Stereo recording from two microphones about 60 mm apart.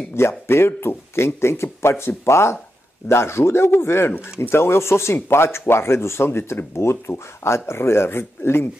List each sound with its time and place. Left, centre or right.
0.1 s speech: left